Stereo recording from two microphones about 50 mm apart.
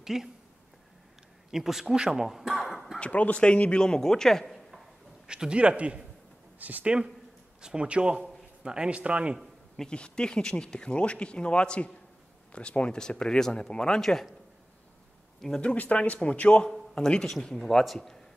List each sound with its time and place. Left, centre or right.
0.0 s speech: centre
1.5 s speech: centre
3.0 s speech: left
3.8 s speech: centre
4.6 s a sound: centre
6.6 s speech: right
7.6 s a man's voice: centre
9.8 s speech: centre
15.6 s speech: left; by 18.2 s centre